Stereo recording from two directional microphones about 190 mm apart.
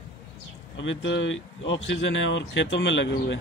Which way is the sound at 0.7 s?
80° left.